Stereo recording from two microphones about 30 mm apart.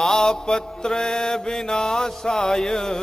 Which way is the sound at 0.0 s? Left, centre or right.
Centre.